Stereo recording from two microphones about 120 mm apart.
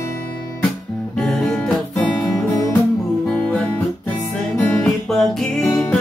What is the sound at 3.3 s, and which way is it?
Music, 10° left (ahead or behind).